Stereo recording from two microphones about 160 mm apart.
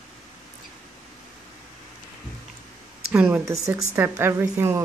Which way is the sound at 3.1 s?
10° right (ahead or behind).